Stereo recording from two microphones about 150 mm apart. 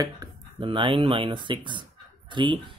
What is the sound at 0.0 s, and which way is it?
Speech, 30° right (ahead or behind).